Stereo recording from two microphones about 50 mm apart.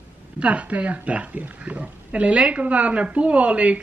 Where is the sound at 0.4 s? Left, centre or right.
Right.